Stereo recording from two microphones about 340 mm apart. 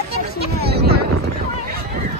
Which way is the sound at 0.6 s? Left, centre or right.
Right.